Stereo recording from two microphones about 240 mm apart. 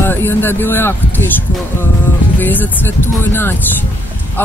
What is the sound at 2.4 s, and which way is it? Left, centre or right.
Speech, centre.